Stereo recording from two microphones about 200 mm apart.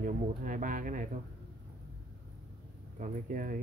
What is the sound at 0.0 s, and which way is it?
Speech, 40° right (ahead or behind).